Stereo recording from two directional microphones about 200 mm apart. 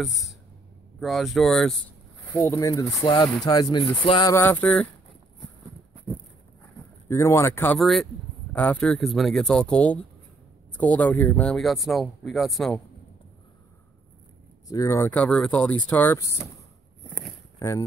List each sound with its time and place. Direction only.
0.0 s speech: centre (ahead or behind)
2.3 s speech: 15° left (ahead or behind)
4.3 s speech: 10° left (ahead or behind)
7.1 s speech: 15° left (ahead or behind)
14.7 s speech: 15° left (ahead or behind)
17.6 s speech: 15° left (ahead or behind)